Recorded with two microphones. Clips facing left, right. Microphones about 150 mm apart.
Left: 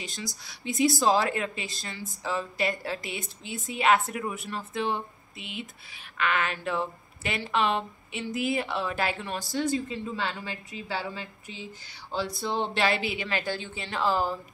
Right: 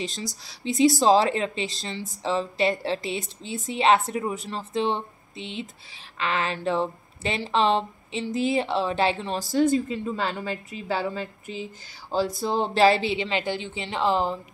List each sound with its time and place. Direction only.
0.5 s speech: 35° right (ahead or behind)
9.4 s a woman's voice: 40° right (ahead or behind); by 14.4 s 20° right (ahead or behind)